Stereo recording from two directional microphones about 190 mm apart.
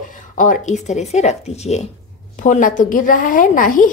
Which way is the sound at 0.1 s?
45° left (ahead or behind).